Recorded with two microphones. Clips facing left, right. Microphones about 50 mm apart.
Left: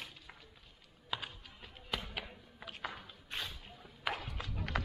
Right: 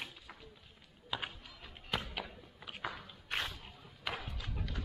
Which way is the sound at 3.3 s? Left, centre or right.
Right.